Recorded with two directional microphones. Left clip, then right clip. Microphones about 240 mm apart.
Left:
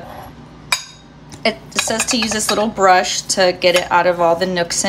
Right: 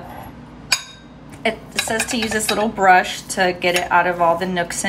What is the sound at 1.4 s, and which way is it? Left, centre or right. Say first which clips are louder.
Speech: left 3 dB; centre.